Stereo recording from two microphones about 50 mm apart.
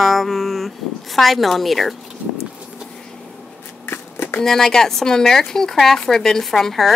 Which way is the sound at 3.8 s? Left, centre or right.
Left.